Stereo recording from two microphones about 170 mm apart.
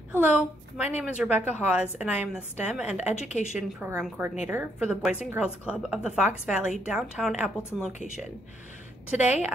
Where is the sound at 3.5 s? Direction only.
5° right (ahead or behind).